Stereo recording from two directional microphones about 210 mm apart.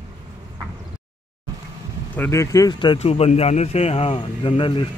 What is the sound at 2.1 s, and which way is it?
A man's voice, 15° left (ahead or behind).